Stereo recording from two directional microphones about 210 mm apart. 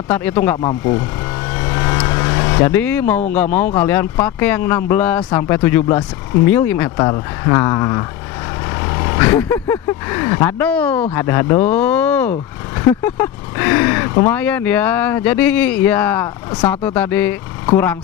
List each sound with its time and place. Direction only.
0.1 s speech: 10° left (ahead or behind)
0.6 s speech: 20° left (ahead or behind)
1.5 s vehicle: 15° left (ahead or behind)
3.5 s speech: 10° left (ahead or behind)